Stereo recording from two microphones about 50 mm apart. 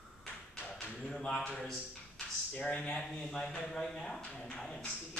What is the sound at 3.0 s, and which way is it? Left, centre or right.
Speech, centre.